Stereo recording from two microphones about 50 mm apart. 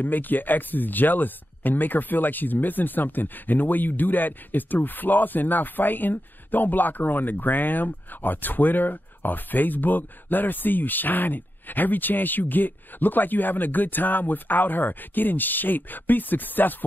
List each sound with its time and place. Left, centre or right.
0.0 s speech: left